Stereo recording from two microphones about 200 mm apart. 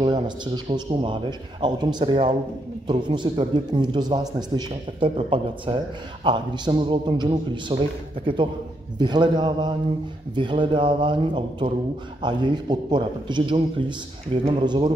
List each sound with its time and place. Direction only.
0.7 s a man's voice: 20° right (ahead or behind)
8.9 s a man's voice: 20° right (ahead or behind)